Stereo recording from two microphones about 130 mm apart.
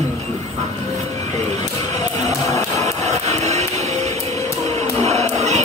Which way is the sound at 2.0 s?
25° left (ahead or behind).